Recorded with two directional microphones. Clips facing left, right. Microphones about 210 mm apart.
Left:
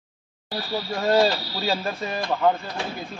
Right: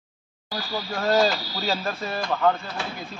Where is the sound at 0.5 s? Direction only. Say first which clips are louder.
Left 2 dB; 25° left (ahead or behind).